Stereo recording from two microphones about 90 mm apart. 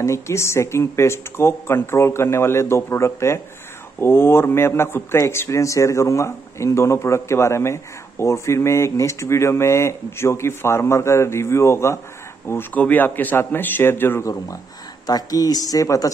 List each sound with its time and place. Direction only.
0.0 s speech: 30° left (ahead or behind)
12.4 s a man's voice: 20° left (ahead or behind)
14.2 s a woman's voice: 35° left (ahead or behind)